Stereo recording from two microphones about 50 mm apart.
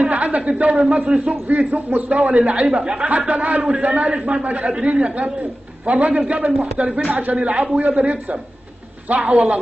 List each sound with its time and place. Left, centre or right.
0.0 s a sound: right
0.6 s a man's voice: right
7.3 s a man's voice: right